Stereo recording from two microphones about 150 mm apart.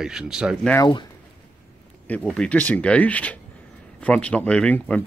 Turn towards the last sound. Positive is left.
turn(degrees=10)  # may be behind; listen again after turning